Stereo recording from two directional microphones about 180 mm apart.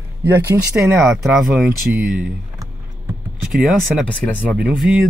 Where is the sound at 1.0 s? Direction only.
Centre (ahead or behind).